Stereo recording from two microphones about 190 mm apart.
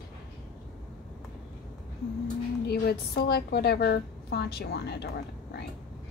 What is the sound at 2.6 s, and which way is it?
A woman's voice, 60° left (ahead or behind).